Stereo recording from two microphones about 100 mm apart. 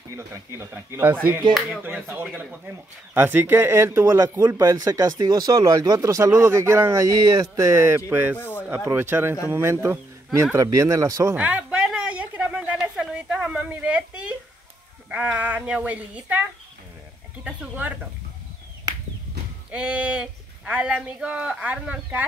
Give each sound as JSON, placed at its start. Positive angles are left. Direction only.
{"t": 0.1, "sound": "speech", "side_deg": -30}
{"t": 8.4, "sound": "speech", "side_deg": 20}
{"t": 8.6, "sound": "speech", "side_deg": -20}
{"t": 11.3, "sound": "a sound", "side_deg": -10}
{"t": 15.0, "sound": "speech", "side_deg": -15}
{"t": 17.5, "sound": "speech", "side_deg": -15}
{"t": 19.7, "sound": "speech", "side_deg": -15}